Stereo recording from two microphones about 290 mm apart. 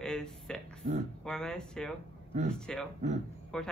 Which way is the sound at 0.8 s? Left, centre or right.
Right.